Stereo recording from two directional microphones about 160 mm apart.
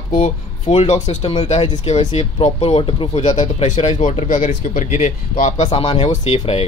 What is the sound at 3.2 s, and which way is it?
Speech, 45° left (ahead or behind).